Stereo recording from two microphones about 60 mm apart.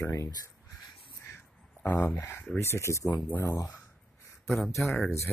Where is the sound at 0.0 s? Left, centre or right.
Left.